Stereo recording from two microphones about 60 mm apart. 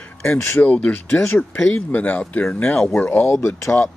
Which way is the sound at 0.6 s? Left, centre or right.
Left.